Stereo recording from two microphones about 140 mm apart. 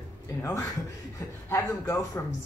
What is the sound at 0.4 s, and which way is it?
Speech, 20° left (ahead or behind).